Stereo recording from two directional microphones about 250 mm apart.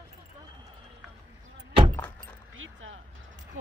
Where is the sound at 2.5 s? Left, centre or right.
Right.